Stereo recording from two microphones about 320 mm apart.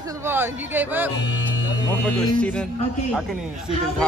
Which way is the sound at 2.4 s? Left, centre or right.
Centre.